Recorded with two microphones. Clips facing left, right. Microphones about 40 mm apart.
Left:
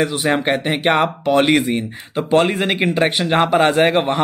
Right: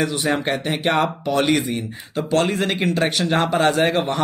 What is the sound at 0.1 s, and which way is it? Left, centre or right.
Speech, centre.